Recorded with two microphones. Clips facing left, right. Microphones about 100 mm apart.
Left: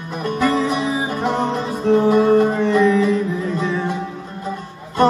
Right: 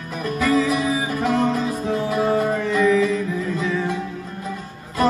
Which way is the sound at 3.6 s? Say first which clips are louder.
Left 1 dB; 30° left (ahead or behind).